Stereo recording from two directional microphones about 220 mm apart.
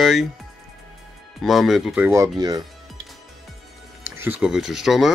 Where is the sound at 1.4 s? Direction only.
Centre (ahead or behind); by 2.6 s 20° right (ahead or behind).